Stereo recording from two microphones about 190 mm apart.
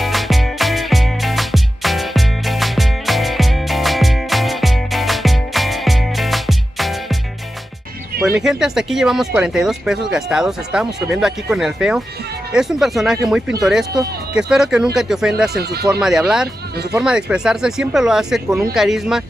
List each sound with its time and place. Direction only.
0.0 s music: centre (ahead or behind)
8.4 s speech: 5° right (ahead or behind)
15.5 s speech: 55° right (ahead or behind)
16.0 s speech: 5° right (ahead or behind)